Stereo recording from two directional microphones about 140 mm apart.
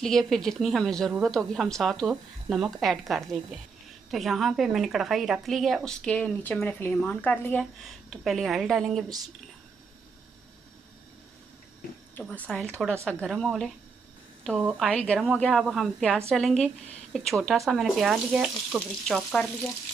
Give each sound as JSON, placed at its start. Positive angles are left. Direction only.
{"t": 0.0, "sound": "a woman's voice", "side_deg": 5}
{"t": 7.8, "sound": "a woman's voice", "side_deg": 0}
{"t": 12.2, "sound": "a woman's voice", "side_deg": 10}